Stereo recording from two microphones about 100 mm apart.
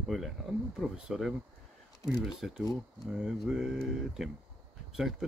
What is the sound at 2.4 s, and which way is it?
Speech, 5° right (ahead or behind).